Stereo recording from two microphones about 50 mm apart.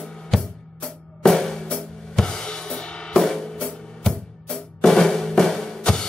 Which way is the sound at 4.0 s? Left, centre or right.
Centre.